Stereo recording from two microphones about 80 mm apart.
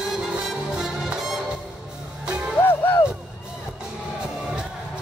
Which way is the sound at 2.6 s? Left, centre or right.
Left.